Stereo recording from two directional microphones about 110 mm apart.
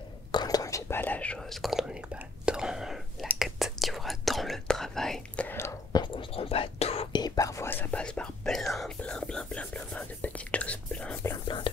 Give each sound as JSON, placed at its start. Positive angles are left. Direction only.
{"t": 0.3, "sound": "whispering", "side_deg": 40}
{"t": 1.6, "sound": "speech", "side_deg": -5}
{"t": 2.4, "sound": "whispering", "side_deg": -5}
{"t": 5.9, "sound": "whispering", "side_deg": 40}
{"t": 6.3, "sound": "whispering", "side_deg": 60}
{"t": 7.1, "sound": "whispering", "side_deg": 40}
{"t": 7.7, "sound": "whispering", "side_deg": 15}
{"t": 11.4, "sound": "whispering", "side_deg": 50}